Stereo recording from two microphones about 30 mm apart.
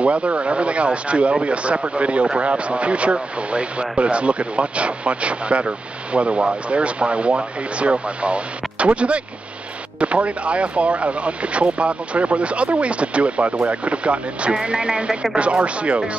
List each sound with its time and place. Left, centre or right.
0.0 s speech: right